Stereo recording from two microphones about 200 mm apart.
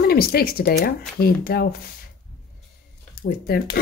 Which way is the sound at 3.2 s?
50° left (ahead or behind).